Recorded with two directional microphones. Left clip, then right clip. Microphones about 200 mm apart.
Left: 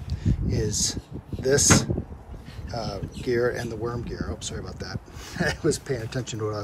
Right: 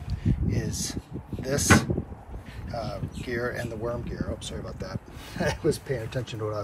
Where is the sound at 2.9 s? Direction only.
20° left (ahead or behind).